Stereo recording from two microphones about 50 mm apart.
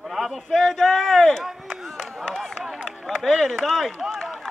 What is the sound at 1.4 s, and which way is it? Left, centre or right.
Speech, centre.